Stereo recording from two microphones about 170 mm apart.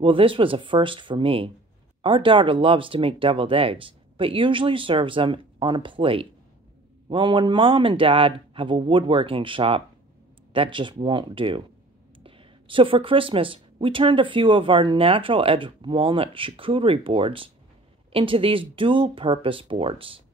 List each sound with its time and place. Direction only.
0.0 s speech: 30° right (ahead or behind)